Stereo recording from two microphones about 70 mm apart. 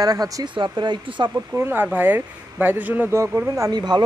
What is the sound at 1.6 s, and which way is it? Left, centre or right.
Speech, right.